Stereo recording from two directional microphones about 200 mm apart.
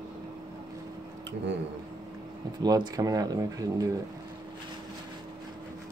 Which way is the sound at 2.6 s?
20° right (ahead or behind).